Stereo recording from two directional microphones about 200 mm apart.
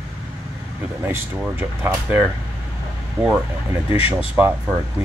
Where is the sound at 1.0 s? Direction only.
10° right (ahead or behind).